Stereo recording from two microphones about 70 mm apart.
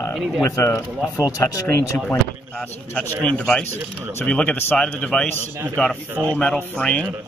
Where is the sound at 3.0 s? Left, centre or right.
Centre.